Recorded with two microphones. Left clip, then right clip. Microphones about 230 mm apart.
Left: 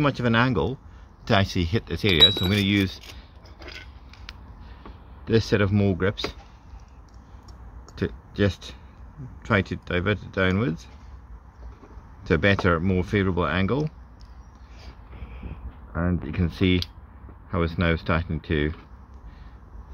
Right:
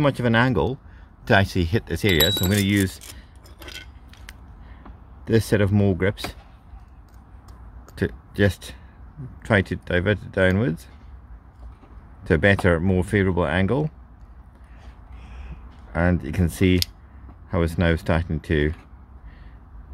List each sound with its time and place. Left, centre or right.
0.0 s speech: right
5.2 s speech: right
7.9 s speech: right
12.2 s speech: right
15.9 s speech: right